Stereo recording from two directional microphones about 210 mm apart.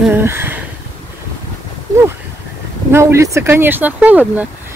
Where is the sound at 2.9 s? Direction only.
15° right (ahead or behind).